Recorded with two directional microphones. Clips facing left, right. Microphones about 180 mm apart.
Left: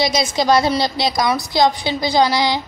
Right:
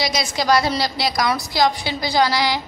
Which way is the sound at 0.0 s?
25° left (ahead or behind).